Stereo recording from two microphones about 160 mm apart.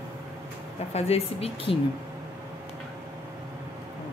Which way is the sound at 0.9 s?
40° left (ahead or behind).